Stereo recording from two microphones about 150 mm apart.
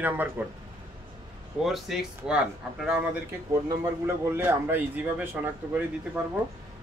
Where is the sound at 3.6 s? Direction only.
15° right (ahead or behind).